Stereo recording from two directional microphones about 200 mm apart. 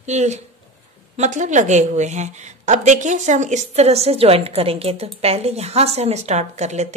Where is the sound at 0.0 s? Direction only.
35° right (ahead or behind).